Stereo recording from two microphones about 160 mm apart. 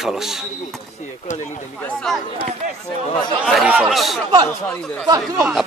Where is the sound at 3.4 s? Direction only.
5° right (ahead or behind).